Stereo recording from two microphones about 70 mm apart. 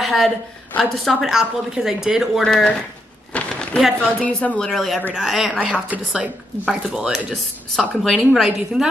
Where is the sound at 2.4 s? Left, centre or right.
Centre.